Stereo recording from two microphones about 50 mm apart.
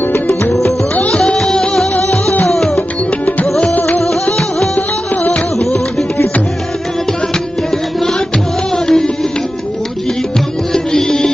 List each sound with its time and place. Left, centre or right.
1.1 s music: centre
4.0 s music: centre
4.7 s music: left
8.7 s music: centre
10.7 s music: centre